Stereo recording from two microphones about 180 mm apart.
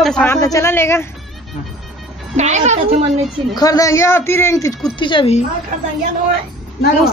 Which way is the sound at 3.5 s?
20° left (ahead or behind).